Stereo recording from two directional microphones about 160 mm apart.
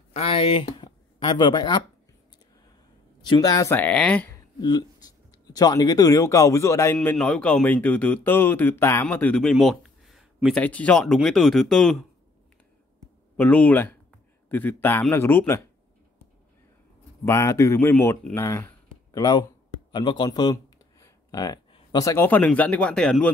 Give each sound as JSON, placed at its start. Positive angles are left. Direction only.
{"t": 0.1, "sound": "speech", "side_deg": 40}
{"t": 3.3, "sound": "speech", "side_deg": 25}
{"t": 4.6, "sound": "speech", "side_deg": 25}
{"t": 7.0, "sound": "speech", "side_deg": 5}
{"t": 13.4, "sound": "speech", "side_deg": 10}
{"t": 17.2, "sound": "speech", "side_deg": 15}